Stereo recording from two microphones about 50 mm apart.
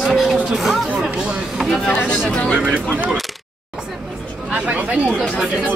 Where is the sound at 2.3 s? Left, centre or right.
Left.